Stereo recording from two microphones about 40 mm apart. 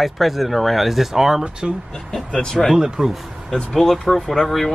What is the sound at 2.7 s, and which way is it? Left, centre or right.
Speech, centre.